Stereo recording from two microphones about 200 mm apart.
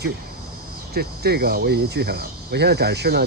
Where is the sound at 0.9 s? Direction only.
50° right (ahead or behind).